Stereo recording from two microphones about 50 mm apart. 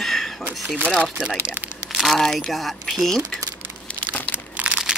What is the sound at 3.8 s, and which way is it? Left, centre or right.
Crumpling, left.